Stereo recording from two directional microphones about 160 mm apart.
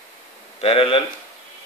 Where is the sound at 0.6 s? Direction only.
35° left (ahead or behind).